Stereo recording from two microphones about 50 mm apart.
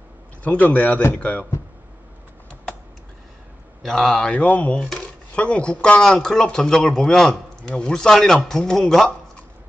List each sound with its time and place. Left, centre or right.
0.4 s speech: left
3.8 s speech: centre
4.4 s speech: left; by 9.1 s centre